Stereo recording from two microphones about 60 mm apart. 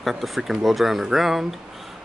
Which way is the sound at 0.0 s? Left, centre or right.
Centre.